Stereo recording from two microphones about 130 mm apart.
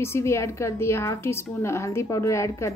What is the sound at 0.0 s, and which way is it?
A woman's voice, 20° left (ahead or behind).